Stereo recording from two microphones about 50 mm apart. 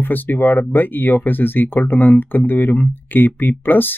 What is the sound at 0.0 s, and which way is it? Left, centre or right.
Speech, left.